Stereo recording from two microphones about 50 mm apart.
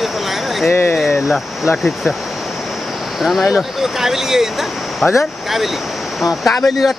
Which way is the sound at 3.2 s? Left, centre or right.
Centre.